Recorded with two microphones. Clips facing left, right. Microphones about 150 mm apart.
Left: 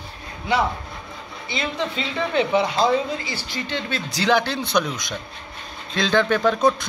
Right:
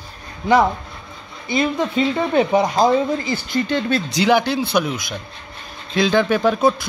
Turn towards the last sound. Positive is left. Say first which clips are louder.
# right 2 dB
turn(degrees=-5)  # may be behind; listen again after turning